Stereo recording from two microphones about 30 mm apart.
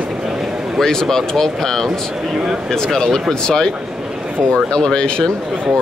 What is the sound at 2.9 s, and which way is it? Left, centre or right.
Speech, centre.